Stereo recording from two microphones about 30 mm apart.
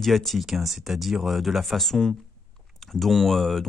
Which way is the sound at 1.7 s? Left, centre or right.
Centre.